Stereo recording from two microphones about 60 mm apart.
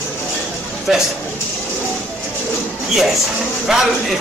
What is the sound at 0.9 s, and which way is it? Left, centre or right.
Speech, centre.